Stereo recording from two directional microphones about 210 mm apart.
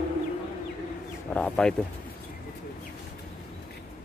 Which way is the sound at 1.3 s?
5° left (ahead or behind).